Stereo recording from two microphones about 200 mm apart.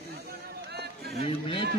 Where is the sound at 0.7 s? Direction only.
55° right (ahead or behind).